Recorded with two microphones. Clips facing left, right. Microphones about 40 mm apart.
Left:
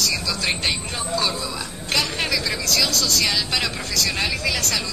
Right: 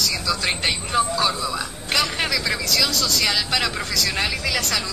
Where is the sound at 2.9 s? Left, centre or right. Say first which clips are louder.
Even; right.